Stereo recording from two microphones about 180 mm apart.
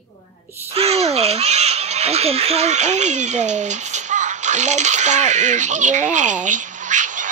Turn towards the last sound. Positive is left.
turn(degrees=-45)  # may be behind; listen again after turning